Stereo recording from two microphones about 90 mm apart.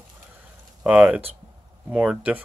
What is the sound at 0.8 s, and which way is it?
Speech, 15° right (ahead or behind).